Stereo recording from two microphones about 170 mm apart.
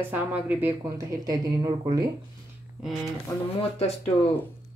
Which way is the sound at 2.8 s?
Centre (ahead or behind).